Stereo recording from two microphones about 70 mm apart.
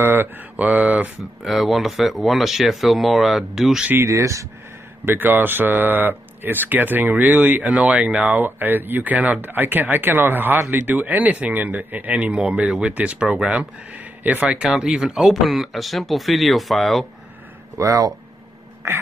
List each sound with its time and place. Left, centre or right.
0.0 s speech: right
1.4 s speech: centre
4.1 s speech: right
5.0 s speech: right
14.7 s speech: centre
17.7 s speech: right